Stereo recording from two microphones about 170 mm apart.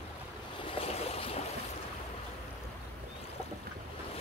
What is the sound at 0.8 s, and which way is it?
Boat, 35° left (ahead or behind).